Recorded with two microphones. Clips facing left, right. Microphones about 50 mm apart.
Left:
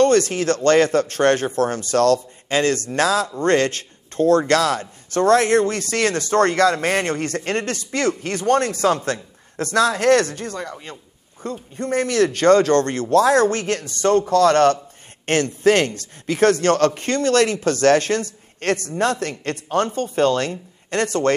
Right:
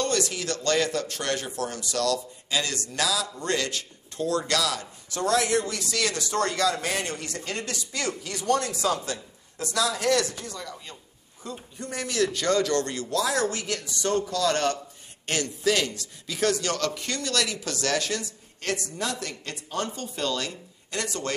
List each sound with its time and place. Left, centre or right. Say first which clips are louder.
0.0 s speech: left 11 dB; left